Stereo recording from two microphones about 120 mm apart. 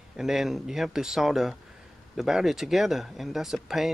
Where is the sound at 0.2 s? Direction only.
5° right (ahead or behind).